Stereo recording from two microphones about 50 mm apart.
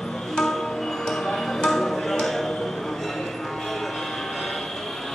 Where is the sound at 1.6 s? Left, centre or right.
Centre.